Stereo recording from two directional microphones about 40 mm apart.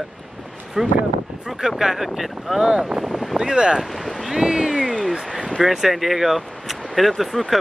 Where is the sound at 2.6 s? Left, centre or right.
Right.